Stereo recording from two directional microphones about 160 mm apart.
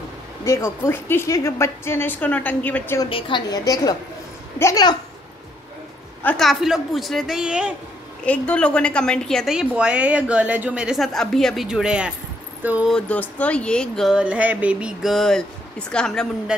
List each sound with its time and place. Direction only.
0.5 s a woman's voice: 15° left (ahead or behind)
3.1 s a woman's voice: 35° left (ahead or behind)
6.2 s a woman's voice: centre (ahead or behind)
8.3 s a woman's voice: 5° left (ahead or behind)
12.9 s a woman's voice: 10° left (ahead or behind)